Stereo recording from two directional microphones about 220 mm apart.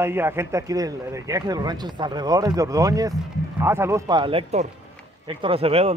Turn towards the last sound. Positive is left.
turn(degrees=-25)  # may be behind; listen again after turning